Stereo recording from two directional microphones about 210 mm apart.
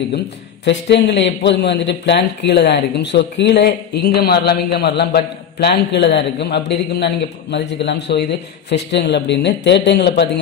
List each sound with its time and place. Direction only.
0.7 s a man's voice: 55° left (ahead or behind)